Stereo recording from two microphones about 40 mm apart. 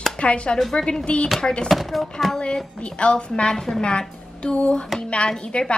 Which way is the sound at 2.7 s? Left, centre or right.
Left.